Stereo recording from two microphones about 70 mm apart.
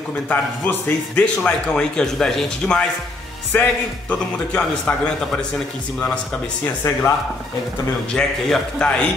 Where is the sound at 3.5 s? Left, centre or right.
Left.